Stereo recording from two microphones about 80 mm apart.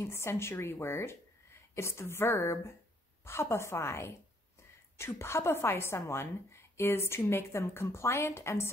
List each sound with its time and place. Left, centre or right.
0.0 s a woman's voice: left